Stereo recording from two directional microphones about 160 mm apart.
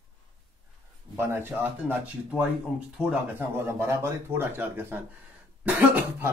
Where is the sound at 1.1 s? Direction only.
15° right (ahead or behind).